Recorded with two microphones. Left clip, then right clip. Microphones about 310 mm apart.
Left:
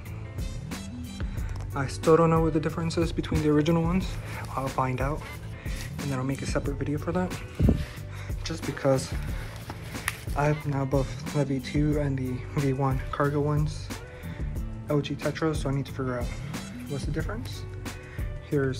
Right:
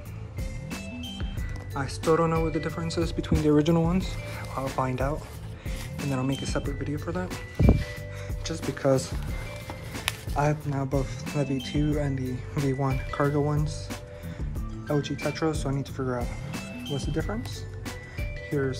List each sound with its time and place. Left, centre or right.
1.7 s speech: centre
8.5 s speech: centre
9.9 s music: centre
10.8 s speech: centre
14.9 s speech: centre
16.9 s speech: centre
18.5 s speech: centre